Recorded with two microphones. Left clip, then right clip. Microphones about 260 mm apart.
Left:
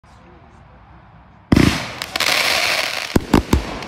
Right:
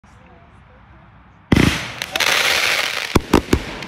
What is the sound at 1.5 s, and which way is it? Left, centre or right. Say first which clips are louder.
Fireworks: left 1 dB; centre.